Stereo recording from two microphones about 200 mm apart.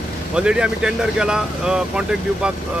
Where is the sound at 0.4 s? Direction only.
5° right (ahead or behind).